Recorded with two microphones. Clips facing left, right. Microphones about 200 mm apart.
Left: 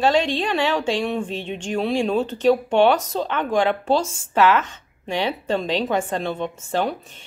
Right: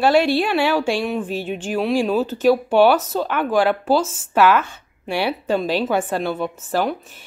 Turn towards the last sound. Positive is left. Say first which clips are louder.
# right 2 dB
turn(degrees=-5)  # may be behind; listen again after turning